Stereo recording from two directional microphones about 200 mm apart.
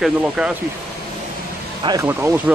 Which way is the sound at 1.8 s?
15° right (ahead or behind).